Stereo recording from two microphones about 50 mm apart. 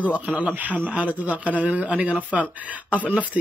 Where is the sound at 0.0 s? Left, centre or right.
Right.